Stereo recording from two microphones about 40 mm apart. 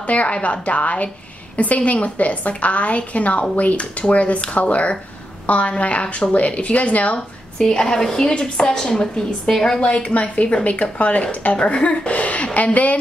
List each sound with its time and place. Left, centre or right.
0.0 s speech: left
7.5 s a woman's voice: centre
9.8 s a woman's voice: left